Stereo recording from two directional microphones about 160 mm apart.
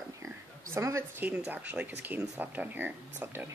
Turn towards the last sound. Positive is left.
turn(degrees=-15)  # may be behind; listen again after turning